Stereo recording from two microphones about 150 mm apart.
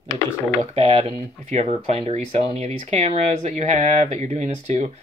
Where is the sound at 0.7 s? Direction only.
40° right (ahead or behind).